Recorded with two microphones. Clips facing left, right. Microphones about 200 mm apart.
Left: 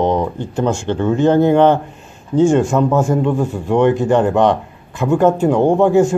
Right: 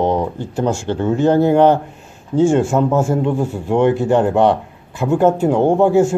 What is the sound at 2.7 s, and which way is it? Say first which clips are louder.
Speech: left 1 dB; 25° right (ahead or behind).